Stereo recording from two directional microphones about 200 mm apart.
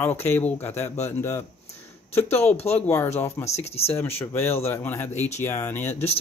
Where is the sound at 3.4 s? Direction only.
30° left (ahead or behind).